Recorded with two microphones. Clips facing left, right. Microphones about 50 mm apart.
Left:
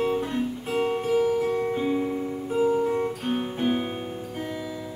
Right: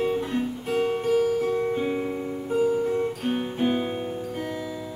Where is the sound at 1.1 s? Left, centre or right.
Left.